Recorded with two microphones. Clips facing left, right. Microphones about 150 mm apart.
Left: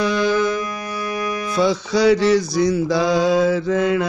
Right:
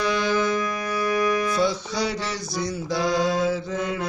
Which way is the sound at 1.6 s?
90° left.